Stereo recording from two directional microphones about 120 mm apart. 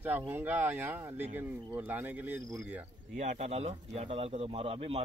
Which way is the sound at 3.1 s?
80° right.